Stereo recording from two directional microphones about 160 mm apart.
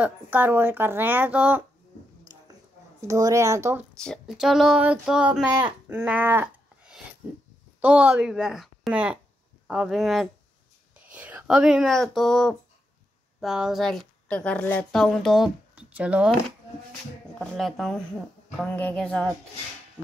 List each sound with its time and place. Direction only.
0.0 s a woman's voice: 10° right (ahead or behind)
3.1 s speech: 20° right (ahead or behind)
4.0 s a woman's voice: centre (ahead or behind)
15.7 s a sound: 10° right (ahead or behind)
17.4 s speech: centre (ahead or behind)